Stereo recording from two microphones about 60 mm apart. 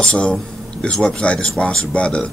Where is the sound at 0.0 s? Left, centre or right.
Centre.